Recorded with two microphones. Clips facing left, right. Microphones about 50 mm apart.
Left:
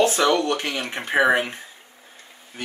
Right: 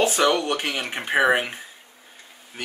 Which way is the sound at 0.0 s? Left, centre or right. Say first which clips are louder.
Left 1 dB; centre.